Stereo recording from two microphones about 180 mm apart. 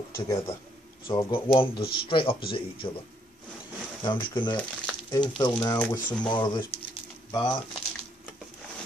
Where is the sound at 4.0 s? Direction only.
25° left (ahead or behind).